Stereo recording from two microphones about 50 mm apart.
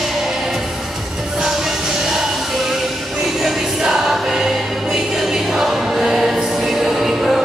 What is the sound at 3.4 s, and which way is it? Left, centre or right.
Music, centre.